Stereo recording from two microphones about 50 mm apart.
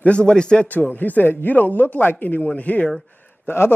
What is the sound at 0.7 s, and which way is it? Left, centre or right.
Speech, left.